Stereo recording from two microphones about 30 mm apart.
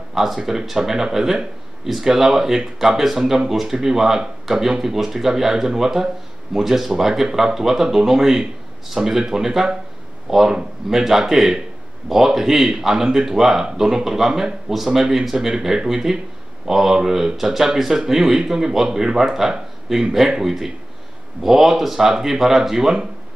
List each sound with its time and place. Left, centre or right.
0.1 s a sound: centre
0.8 s speech: right
15.3 s speech: right